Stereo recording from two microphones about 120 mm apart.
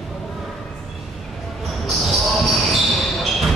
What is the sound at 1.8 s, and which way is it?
Basketball bounce, centre (ahead or behind).